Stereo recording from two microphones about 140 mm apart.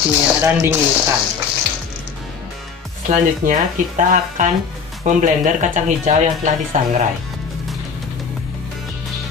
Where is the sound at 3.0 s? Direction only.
70° right (ahead or behind).